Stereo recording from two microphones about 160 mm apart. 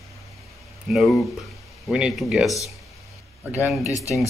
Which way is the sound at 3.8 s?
20° left (ahead or behind).